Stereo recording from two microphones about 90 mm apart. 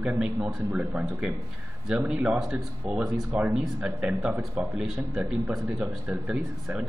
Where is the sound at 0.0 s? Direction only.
10° right (ahead or behind).